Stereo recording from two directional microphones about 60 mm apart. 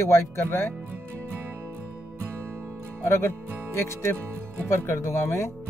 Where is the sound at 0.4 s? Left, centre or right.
Left.